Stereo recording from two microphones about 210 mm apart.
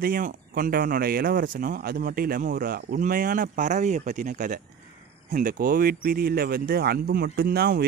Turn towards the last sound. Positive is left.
turn(degrees=-50)  # may be behind; listen again after turning